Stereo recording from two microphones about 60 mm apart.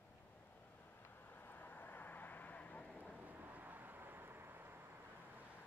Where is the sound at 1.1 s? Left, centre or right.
Left; by 3.1 s centre.